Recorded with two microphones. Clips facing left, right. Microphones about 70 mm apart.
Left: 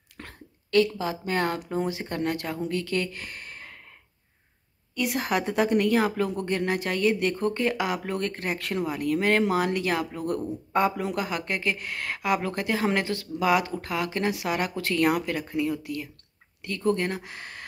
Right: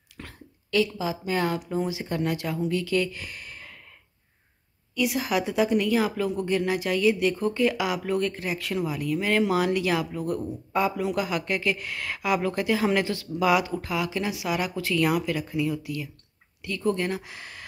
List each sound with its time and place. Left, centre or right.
0.2 s a sound: left
1.7 s speech: left
4.9 s speech: left
9.5 s speech: left